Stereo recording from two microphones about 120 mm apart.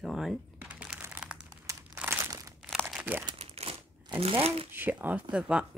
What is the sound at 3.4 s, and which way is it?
Crumpling, 60° right (ahead or behind).